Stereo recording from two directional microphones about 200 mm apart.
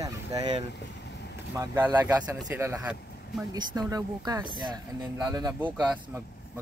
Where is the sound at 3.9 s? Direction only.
20° right (ahead or behind).